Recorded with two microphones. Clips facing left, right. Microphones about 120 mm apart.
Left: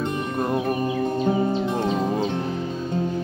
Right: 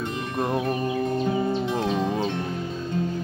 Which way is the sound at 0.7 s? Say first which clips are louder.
Left 2 dB; 20° left (ahead or behind).